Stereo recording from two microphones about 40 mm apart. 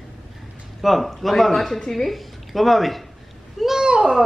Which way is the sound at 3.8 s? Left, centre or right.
Right.